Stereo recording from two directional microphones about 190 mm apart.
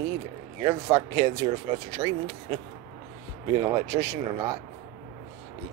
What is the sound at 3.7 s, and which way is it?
Speech, 20° right (ahead or behind).